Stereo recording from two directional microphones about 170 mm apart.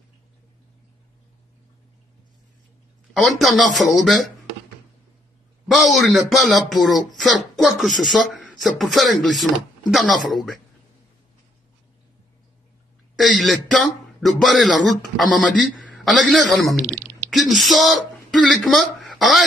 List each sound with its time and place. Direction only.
3.1 s speech: centre (ahead or behind)
5.7 s speech: centre (ahead or behind)
13.1 s speech: centre (ahead or behind)
16.8 s speech: 15° right (ahead or behind)
17.3 s speech: centre (ahead or behind)